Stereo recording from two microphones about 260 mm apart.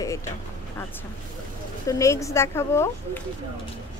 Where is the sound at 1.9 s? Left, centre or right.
Centre.